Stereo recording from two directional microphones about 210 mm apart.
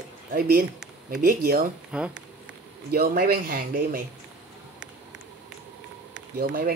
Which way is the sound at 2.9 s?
45° right (ahead or behind).